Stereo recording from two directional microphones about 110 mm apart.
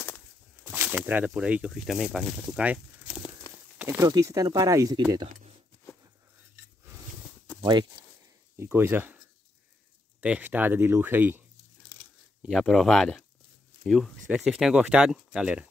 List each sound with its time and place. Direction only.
0.7 s speech: 15° right (ahead or behind)
2.6 s a sound: 10° right (ahead or behind)
4.0 s speech: 30° right (ahead or behind)
5.2 s a sound: 60° right (ahead or behind)
8.5 s speech: 20° right (ahead or behind)
10.2 s speech: 15° right (ahead or behind)
12.4 s speech: centre (ahead or behind)